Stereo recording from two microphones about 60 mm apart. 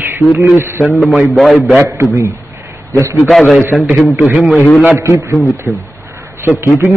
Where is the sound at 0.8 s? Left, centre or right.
Centre.